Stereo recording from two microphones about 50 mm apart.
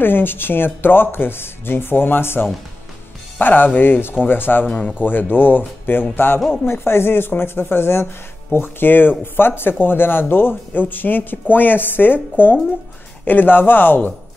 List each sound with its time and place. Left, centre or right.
0.0 s speech: left
4.6 s speech: left
5.0 s speech: left